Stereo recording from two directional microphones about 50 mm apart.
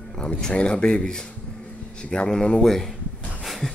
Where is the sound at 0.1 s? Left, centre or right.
Centre.